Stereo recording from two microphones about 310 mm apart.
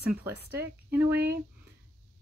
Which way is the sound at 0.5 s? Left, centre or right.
Centre.